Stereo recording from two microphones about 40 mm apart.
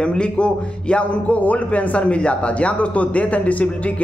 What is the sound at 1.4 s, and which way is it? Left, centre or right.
A man's voice, left.